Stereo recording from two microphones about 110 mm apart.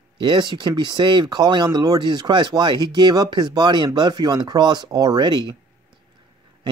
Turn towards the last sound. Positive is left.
turn(degrees=-40)  # may be behind; listen again after turning